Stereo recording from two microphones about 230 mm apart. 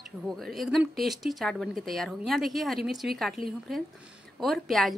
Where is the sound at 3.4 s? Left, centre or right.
Left.